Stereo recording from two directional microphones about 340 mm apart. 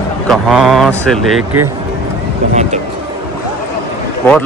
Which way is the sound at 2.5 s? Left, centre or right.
Centre.